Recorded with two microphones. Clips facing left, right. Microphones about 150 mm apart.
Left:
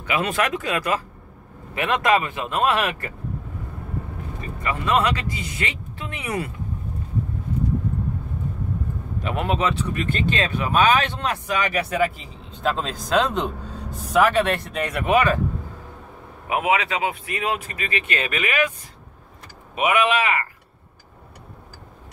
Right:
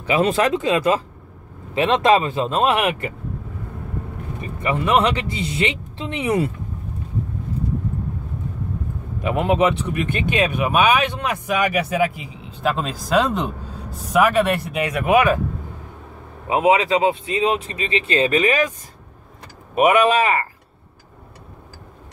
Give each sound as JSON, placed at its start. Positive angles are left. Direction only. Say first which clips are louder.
{"t": 0.0, "sound": "speech", "louder": "right 5 dB", "side_deg": -30}
{"t": 4.4, "sound": "speech", "louder": "right 5 dB", "side_deg": -20}
{"t": 9.2, "sound": "speech", "louder": "right 6 dB", "side_deg": -15}
{"t": 16.4, "sound": "speech", "louder": "right 5 dB", "side_deg": -30}
{"t": 19.7, "sound": "speech", "louder": "right 5 dB", "side_deg": -45}